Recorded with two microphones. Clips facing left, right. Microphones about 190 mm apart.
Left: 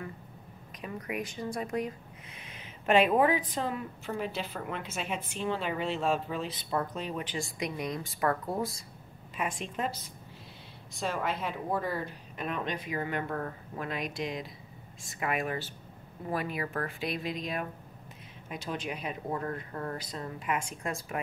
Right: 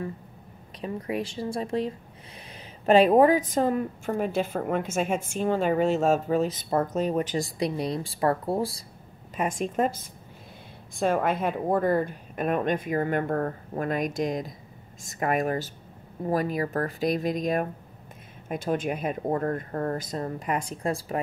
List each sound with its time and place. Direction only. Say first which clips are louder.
0.7 s speech: right 6 dB; 30° right (ahead or behind)
9.4 s speech: right 8 dB; 45° right (ahead or behind)